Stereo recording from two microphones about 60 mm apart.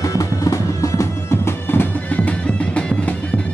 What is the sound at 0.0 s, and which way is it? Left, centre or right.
Music, left.